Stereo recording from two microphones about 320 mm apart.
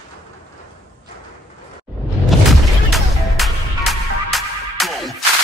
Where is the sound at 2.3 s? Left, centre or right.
Centre.